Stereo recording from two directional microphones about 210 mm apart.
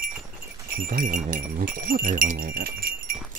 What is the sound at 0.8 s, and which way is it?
Speech, 40° right (ahead or behind).